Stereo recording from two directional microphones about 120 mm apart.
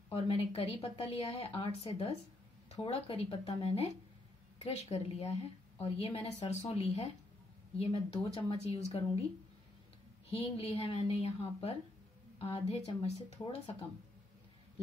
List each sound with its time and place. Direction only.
0.1 s a woman's voice: 55° left (ahead or behind)
10.3 s a woman's voice: 55° left (ahead or behind)